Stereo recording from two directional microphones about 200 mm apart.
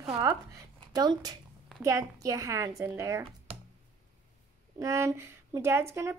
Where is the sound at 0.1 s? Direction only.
15° right (ahead or behind).